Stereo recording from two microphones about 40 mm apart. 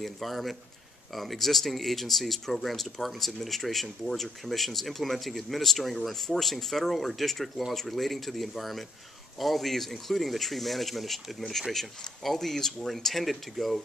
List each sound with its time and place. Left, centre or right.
0.0 s speech: centre